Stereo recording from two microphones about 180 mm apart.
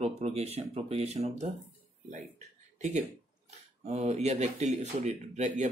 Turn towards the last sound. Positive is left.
turn(degrees=-40)  # may be behind; listen again after turning